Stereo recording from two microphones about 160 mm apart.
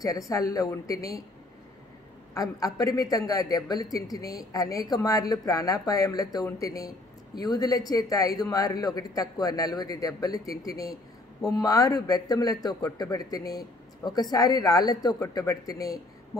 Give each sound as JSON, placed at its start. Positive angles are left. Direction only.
{"t": 0.0, "sound": "speech", "side_deg": 20}
{"t": 2.3, "sound": "speech", "side_deg": 20}